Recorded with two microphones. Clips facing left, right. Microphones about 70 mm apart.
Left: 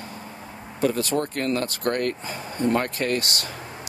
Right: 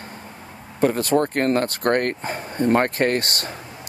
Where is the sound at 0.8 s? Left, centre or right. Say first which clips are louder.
Right 5 dB; right.